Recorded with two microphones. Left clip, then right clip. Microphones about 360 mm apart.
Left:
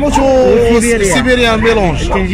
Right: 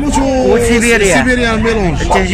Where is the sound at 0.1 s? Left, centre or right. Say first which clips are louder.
Left 1 dB; centre.